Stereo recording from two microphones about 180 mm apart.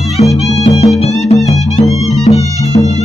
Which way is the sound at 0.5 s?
35° left (ahead or behind).